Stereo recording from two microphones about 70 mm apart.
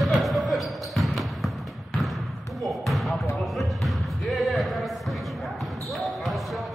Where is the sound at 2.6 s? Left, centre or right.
Centre.